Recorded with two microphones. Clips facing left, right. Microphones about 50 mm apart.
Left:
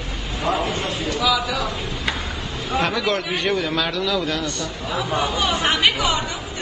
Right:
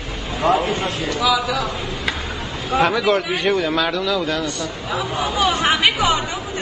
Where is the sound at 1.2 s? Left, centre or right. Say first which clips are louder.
Right 2 dB; centre.